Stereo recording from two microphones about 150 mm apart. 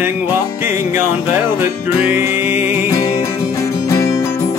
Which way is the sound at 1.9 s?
10° right (ahead or behind).